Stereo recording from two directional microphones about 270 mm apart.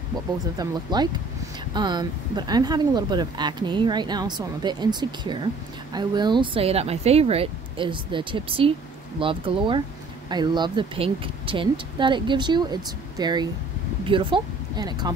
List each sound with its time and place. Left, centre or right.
0.6 s speech: centre